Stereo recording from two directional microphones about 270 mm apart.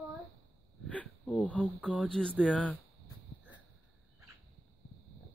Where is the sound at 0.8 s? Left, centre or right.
Centre.